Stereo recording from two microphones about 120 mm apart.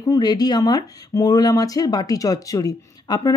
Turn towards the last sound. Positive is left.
turn(degrees=30)  # may be behind; listen again after turning